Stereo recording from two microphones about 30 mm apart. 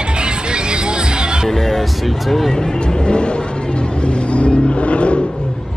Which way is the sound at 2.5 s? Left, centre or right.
Left.